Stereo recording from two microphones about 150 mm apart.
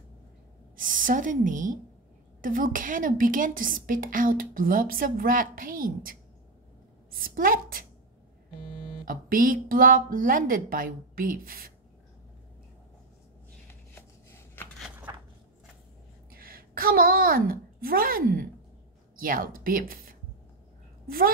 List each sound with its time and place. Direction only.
0.7 s a woman's voice: 65° right (ahead or behind)
7.1 s a sound: 75° right (ahead or behind)
9.0 s a woman's voice: 65° right (ahead or behind)
16.3 s a woman's voice: 75° right (ahead or behind)